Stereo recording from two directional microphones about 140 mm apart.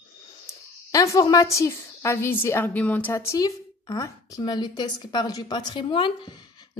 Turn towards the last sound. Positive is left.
turn(degrees=35)  # may be behind; listen again after turning